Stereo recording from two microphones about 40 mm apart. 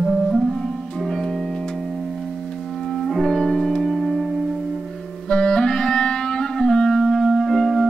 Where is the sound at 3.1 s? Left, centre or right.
Centre.